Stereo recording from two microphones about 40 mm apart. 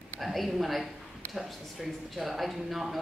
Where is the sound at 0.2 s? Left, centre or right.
Centre.